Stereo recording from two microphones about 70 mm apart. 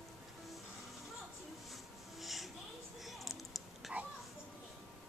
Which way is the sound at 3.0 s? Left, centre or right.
Centre.